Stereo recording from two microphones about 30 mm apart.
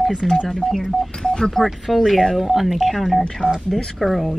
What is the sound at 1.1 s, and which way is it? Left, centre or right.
Speech, centre.